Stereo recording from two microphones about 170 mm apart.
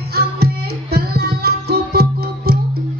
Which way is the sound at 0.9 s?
70° right (ahead or behind).